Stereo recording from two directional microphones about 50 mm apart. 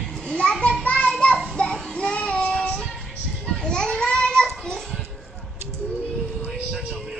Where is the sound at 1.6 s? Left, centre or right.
Centre.